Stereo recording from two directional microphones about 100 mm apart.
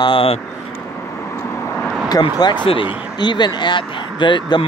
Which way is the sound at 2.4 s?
45° left (ahead or behind).